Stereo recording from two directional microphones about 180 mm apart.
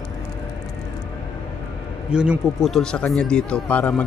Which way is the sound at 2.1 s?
5° right (ahead or behind).